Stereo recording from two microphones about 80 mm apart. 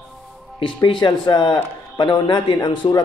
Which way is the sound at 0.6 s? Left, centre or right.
Left.